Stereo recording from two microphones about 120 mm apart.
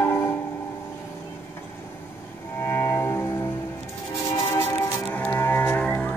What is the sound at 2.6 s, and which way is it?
Music, 20° left (ahead or behind).